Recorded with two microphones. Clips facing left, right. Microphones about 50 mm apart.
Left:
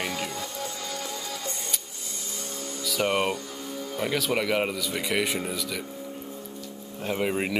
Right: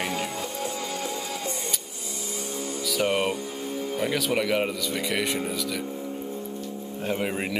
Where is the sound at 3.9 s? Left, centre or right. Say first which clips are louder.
Even; centre.